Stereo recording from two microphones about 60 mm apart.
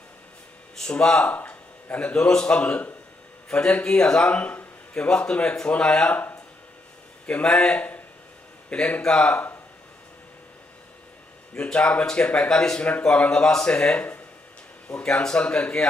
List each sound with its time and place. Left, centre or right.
0.7 s a man's voice: centre
7.4 s speech: centre
7.7 s speech: left
9.3 s speech: left
11.5 s speech: centre